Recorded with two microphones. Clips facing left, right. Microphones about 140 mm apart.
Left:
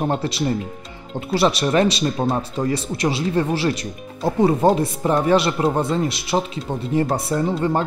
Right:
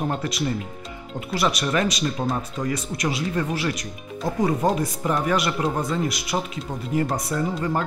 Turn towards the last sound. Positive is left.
turn(degrees=30)  # may be behind; listen again after turning